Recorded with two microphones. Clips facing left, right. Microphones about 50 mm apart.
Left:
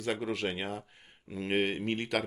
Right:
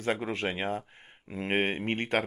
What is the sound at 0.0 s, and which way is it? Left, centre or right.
Speech, right.